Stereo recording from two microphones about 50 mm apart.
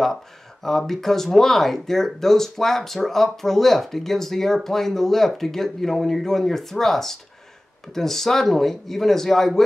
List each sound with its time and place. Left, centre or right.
0.0 s speech: centre